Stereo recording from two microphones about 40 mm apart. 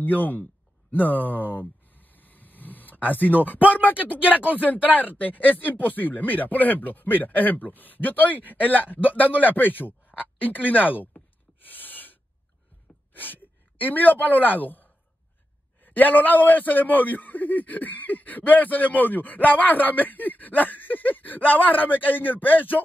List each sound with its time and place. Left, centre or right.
0.0 s a man's voice: left
0.9 s a sound: left
3.6 s a man's voice: left
11.6 s gasp: left
13.1 s a man's voice: left